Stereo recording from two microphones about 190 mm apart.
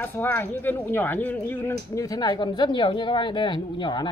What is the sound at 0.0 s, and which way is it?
Speech, 10° left (ahead or behind).